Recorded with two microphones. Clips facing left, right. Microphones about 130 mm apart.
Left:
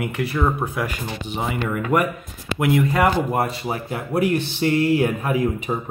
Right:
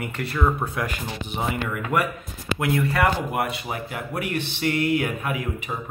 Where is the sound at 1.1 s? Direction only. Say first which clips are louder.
Left 2 dB; centre (ahead or behind).